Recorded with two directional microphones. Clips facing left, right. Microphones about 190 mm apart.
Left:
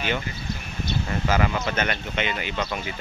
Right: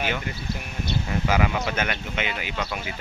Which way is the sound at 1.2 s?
10° right (ahead or behind).